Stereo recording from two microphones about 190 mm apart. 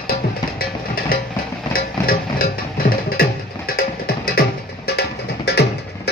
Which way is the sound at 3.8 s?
50° left (ahead or behind).